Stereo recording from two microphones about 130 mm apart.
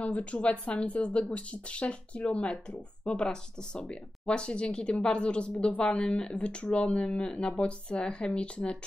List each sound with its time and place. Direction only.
0.0 s speech: 10° left (ahead or behind)